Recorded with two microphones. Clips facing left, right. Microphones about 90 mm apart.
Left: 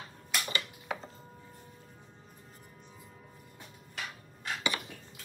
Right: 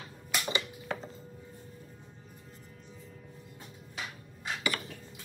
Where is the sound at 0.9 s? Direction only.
5° left (ahead or behind).